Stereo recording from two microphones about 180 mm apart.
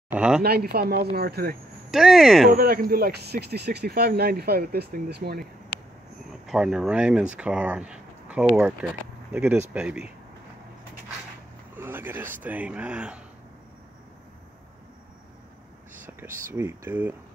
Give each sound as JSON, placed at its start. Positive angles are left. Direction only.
{"t": 0.1, "sound": "speech", "side_deg": -5}
{"t": 0.4, "sound": "speech", "side_deg": -60}
{"t": 1.9, "sound": "speech", "side_deg": 0}
{"t": 2.5, "sound": "speech", "side_deg": -55}
{"t": 6.4, "sound": "speech", "side_deg": -5}
{"t": 11.8, "sound": "speech", "side_deg": -10}
{"t": 16.1, "sound": "whispering", "side_deg": -10}
{"t": 16.5, "sound": "speech", "side_deg": -15}